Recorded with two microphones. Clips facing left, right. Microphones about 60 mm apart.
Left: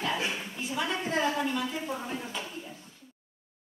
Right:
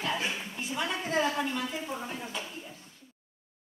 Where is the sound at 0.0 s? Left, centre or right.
Centre.